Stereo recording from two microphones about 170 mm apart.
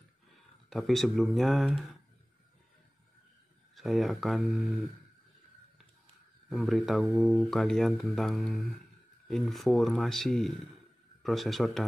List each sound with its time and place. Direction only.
0.7 s speech: centre (ahead or behind)
3.7 s speech: centre (ahead or behind)
6.5 s speech: centre (ahead or behind)